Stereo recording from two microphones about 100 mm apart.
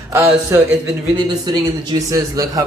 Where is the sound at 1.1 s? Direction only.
45° right (ahead or behind).